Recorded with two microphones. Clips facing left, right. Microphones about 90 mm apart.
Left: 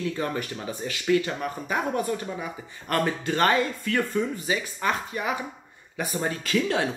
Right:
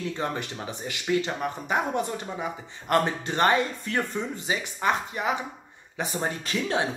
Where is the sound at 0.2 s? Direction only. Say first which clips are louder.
Left 1 dB; 20° right (ahead or behind).